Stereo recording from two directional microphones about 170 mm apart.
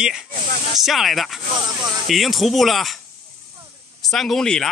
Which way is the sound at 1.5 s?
25° right (ahead or behind).